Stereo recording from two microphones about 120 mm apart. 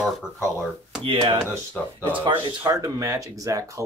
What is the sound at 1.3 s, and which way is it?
Speech, 25° right (ahead or behind).